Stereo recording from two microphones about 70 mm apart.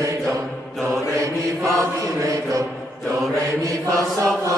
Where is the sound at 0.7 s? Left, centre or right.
Centre.